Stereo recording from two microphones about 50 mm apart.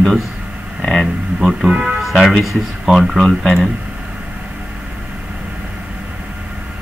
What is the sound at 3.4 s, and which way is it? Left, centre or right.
Speech, centre.